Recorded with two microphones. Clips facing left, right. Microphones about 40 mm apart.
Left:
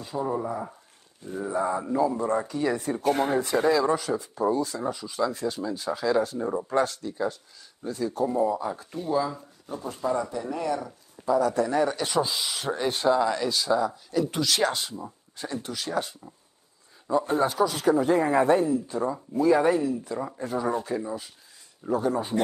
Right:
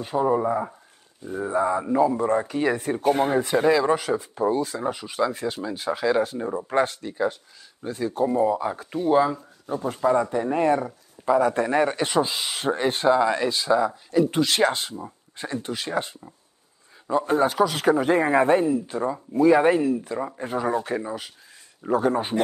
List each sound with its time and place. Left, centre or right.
0.0 s speech: right
0.3 s speech: right
3.0 s speech: centre
3.7 s speech: right
5.3 s speech: right
7.0 s speech: right
14.3 s speech: right
17.3 s speech: right